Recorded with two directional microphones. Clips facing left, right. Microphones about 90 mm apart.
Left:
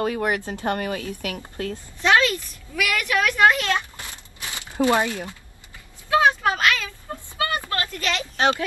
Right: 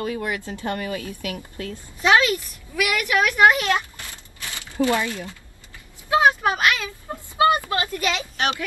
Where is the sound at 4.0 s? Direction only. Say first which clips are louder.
Left 1 dB; 20° left (ahead or behind).